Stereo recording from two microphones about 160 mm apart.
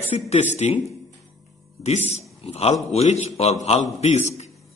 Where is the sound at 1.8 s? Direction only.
45° left (ahead or behind).